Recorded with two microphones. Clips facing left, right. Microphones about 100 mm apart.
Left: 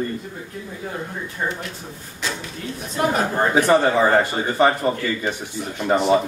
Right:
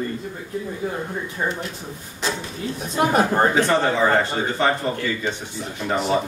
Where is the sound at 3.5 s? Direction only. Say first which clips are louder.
Left 3 dB; 15° left (ahead or behind).